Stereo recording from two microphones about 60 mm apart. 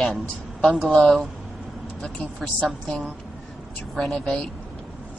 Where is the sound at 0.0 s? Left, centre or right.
Centre.